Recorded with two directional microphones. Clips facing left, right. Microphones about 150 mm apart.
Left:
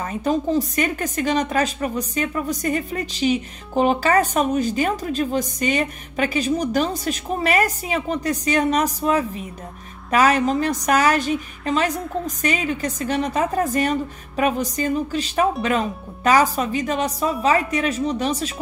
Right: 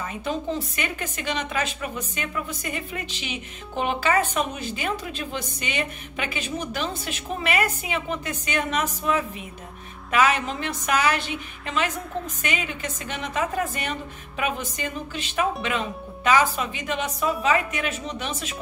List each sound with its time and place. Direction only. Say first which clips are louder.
0.0 s a woman's voice: left 7 dB; 40° left (ahead or behind)